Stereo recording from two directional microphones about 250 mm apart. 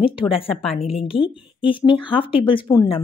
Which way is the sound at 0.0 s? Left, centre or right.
Left.